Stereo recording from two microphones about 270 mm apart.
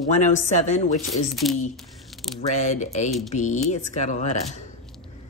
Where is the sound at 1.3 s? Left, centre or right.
Centre.